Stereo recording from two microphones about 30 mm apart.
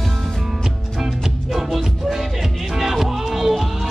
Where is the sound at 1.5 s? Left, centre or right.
Centre.